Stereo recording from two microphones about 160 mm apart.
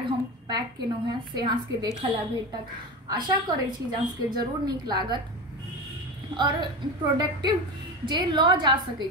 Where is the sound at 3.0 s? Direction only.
25° right (ahead or behind).